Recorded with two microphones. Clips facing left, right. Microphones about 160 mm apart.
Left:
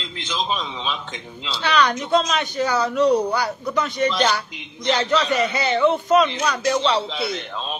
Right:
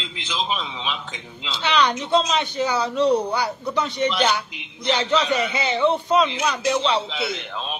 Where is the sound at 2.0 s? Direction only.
30° right (ahead or behind).